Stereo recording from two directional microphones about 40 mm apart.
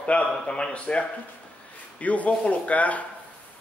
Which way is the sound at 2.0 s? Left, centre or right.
Left.